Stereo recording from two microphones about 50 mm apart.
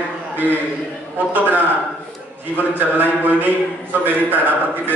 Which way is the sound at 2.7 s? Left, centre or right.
Right.